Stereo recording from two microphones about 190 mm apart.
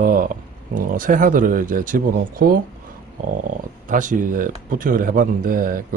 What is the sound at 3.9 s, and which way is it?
Speech, 45° right (ahead or behind).